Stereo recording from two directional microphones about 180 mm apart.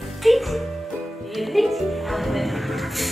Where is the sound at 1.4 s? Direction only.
Centre (ahead or behind).